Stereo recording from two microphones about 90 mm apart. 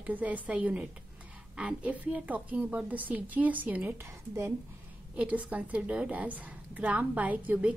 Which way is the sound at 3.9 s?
30° right (ahead or behind).